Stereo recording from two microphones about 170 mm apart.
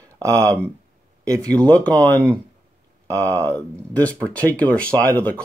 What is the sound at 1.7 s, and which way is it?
Speech, 10° left (ahead or behind).